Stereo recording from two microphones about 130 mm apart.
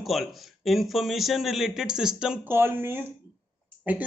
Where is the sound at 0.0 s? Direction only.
Centre (ahead or behind).